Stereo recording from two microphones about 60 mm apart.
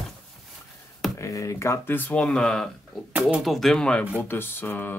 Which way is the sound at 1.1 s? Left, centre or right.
Left.